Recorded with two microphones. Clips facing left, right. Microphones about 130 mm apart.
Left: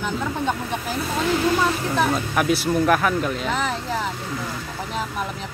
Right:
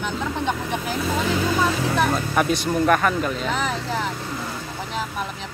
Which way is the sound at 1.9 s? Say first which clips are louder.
Even; centre (ahead or behind).